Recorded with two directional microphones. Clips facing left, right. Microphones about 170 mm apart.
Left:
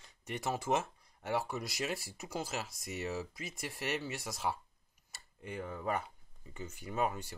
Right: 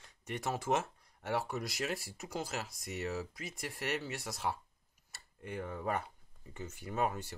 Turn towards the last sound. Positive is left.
turn(degrees=0)  # may be behind; listen again after turning